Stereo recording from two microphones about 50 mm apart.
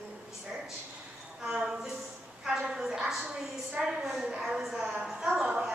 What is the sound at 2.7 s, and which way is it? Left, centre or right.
A woman's voice, centre.